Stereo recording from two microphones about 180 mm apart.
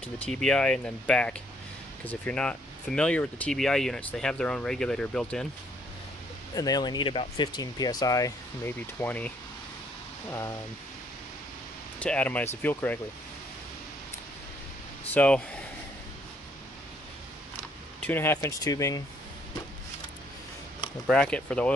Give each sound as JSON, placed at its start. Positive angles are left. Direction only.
{"t": 0.0, "sound": "speech", "side_deg": 5}
{"t": 6.5, "sound": "speech", "side_deg": 20}
{"t": 12.0, "sound": "speech", "side_deg": 5}
{"t": 15.1, "sound": "speech", "side_deg": 5}
{"t": 18.0, "sound": "speech", "side_deg": 10}
{"t": 21.1, "sound": "speech", "side_deg": 5}